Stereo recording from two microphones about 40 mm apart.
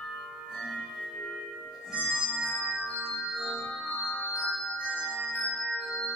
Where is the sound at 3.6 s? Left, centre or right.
Centre.